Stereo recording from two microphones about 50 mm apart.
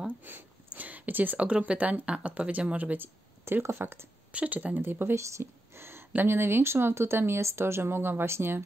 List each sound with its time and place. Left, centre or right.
0.3 s speech: right
0.7 s a sound: right
1.4 s speech: right
3.4 s speech: right
4.3 s speech: right
5.1 s a sound: right
6.2 s speech: right